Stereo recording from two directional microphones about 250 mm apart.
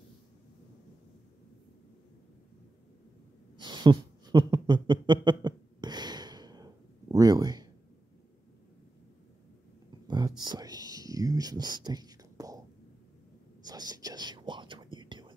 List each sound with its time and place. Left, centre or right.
3.5 s a sound: centre
10.0 s whispering: centre
13.7 s whispering: centre